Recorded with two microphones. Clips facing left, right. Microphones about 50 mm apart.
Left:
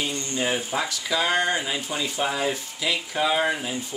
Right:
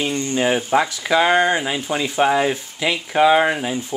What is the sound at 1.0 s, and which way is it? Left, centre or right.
Speech, right.